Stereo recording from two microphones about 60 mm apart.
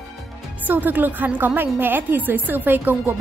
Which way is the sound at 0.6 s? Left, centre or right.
Right.